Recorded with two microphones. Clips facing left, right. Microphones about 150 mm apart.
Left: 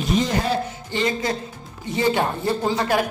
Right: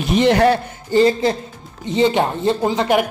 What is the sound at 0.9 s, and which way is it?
Speech, 30° right (ahead or behind).